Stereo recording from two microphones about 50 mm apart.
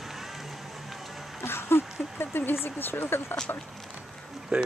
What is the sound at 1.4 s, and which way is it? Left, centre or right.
Speech, left.